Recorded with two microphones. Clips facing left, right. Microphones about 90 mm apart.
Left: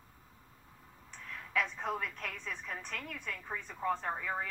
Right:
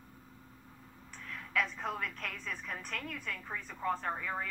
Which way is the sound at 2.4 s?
20° left (ahead or behind).